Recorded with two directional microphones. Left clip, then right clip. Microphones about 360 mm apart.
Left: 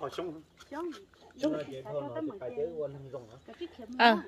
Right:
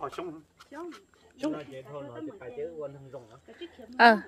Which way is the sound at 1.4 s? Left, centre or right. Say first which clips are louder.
Left 2 dB; centre.